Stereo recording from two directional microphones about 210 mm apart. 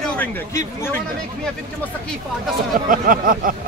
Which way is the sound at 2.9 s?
40° right (ahead or behind).